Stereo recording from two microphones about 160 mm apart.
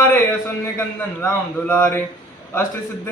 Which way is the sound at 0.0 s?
10° left (ahead or behind).